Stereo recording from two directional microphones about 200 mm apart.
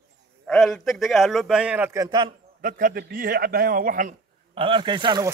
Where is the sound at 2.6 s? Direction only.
40° right (ahead or behind).